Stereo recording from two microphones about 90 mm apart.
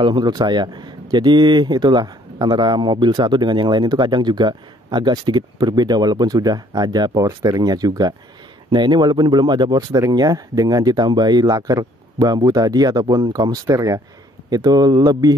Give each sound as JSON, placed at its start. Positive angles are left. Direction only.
{"t": 0.0, "sound": "speech", "side_deg": -55}